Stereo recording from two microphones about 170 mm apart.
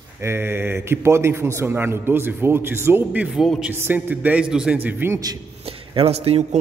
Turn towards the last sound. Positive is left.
turn(degrees=-35)  # may be behind; listen again after turning